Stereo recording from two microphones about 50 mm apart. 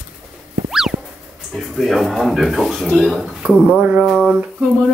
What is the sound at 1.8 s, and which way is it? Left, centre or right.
A woman's voice, centre.